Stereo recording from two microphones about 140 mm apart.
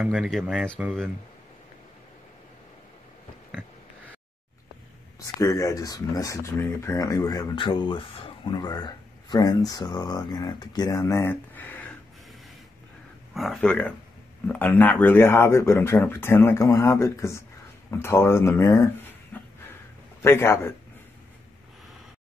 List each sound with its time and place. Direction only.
0.0 s speech: centre (ahead or behind)
5.2 s speech: 25° left (ahead or behind)
13.3 s speech: centre (ahead or behind); by 18.9 s 20° left (ahead or behind)
19.3 s a sound: 15° left (ahead or behind)
20.2 s speech: 15° left (ahead or behind)